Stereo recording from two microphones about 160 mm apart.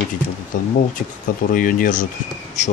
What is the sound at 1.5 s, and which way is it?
Speech, 60° left (ahead or behind).